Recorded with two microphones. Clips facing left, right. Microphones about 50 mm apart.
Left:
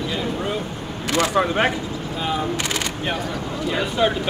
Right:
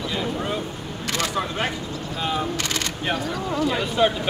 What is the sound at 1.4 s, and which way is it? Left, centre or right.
Speech, left.